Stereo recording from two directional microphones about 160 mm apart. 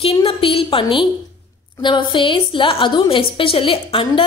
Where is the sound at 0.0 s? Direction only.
35° left (ahead or behind).